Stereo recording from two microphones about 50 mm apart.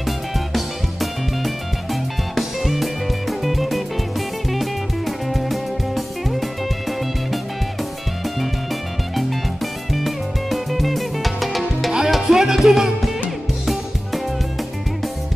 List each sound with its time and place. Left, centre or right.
2.3 s music: centre
9.9 s music: centre